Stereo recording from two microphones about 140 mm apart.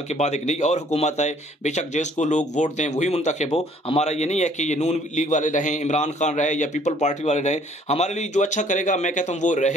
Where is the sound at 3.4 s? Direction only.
40° left (ahead or behind).